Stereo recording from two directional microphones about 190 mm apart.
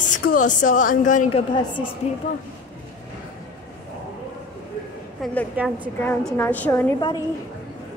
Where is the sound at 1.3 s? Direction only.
25° left (ahead or behind).